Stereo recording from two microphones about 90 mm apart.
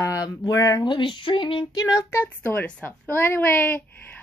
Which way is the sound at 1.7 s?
40° left (ahead or behind).